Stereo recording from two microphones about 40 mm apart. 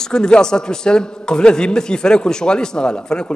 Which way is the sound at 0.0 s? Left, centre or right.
Centre.